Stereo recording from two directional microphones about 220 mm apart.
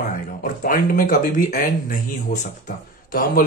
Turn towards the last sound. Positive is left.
turn(degrees=40)  # may be behind; listen again after turning